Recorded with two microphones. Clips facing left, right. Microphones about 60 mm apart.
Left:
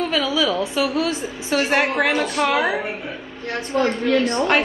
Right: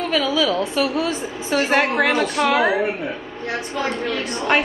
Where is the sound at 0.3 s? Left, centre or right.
Centre.